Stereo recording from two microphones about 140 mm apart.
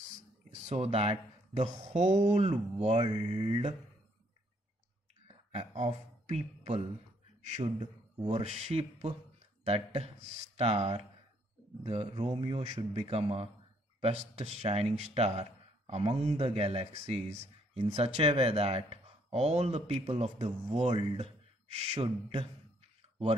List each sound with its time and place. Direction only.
0.6 s speech: 50° right (ahead or behind)
5.3 s speech: 45° right (ahead or behind)